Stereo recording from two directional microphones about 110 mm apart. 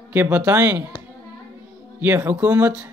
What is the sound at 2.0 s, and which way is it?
Speech, 20° right (ahead or behind).